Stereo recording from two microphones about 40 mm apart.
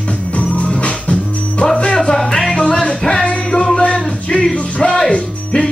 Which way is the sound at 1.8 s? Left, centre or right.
Left.